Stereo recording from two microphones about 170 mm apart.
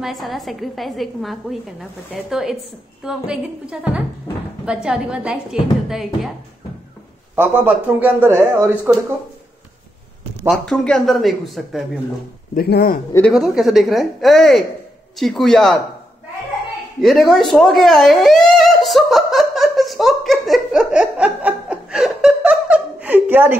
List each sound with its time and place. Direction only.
0.0 s a woman's voice: centre (ahead or behind)
4.8 s a woman's voice: 5° right (ahead or behind)
7.3 s speech: 10° right (ahead or behind)
10.6 s a woman's voice: 5° left (ahead or behind)
12.5 s speech: 65° left (ahead or behind)
13.3 s a woman's voice: centre (ahead or behind)
17.0 s a sound: centre (ahead or behind)